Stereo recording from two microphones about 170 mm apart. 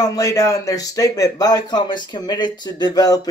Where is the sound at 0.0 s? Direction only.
20° left (ahead or behind).